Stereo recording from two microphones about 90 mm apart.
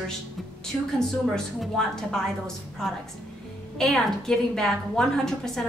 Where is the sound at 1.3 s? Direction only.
5° left (ahead or behind).